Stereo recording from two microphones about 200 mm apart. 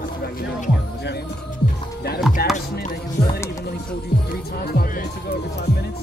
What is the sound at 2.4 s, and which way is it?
Music, 50° left (ahead or behind).